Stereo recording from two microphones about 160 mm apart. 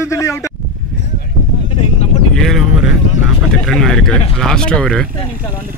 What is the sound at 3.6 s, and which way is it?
Speech, 5° left (ahead or behind).